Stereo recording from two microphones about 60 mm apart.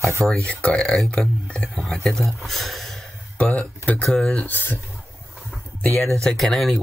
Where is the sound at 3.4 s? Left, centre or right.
Left.